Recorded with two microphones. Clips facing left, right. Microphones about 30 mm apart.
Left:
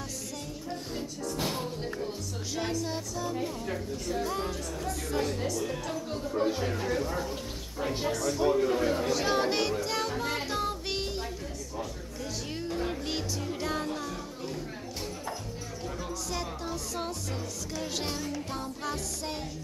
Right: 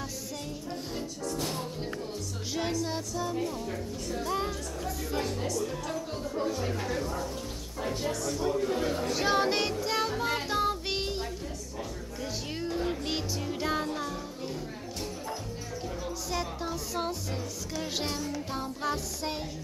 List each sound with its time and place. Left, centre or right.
0.7 s music: centre
1.3 s music: centre
2.5 s music: centre
3.3 s speech: centre
4.3 s speech: centre
8.1 s speech: centre
8.4 s a man's voice: left
8.7 s speech: centre
9.1 s music: centre
16.3 s music: centre